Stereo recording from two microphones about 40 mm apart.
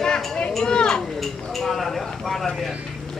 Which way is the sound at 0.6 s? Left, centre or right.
Centre.